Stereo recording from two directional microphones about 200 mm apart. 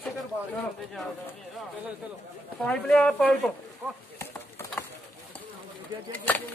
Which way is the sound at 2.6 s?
5° left (ahead or behind).